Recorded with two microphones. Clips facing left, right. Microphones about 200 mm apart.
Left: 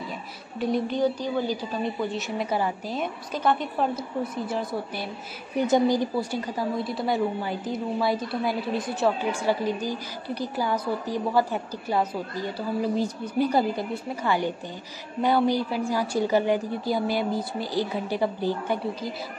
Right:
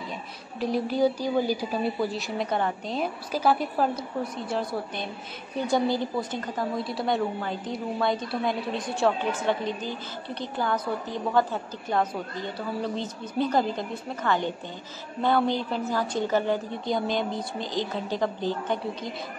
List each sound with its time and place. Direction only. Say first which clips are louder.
0.6 s a woman's voice: even; centre (ahead or behind)
5.6 s a woman's voice: left 4 dB; 15° left (ahead or behind)